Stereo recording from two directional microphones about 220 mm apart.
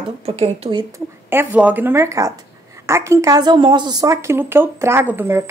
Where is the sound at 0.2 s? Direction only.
30° right (ahead or behind).